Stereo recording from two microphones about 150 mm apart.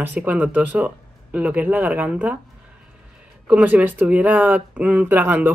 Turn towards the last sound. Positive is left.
turn(degrees=-15)  # may be behind; listen again after turning